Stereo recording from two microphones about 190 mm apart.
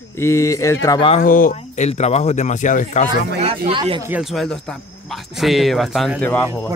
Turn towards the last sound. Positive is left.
turn(degrees=5)  # may be behind; listen again after turning